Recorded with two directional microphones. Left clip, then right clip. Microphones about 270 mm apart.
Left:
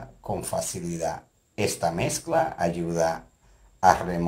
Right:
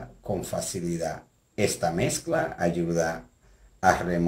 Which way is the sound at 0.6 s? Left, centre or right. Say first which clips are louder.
Left 1 dB; centre.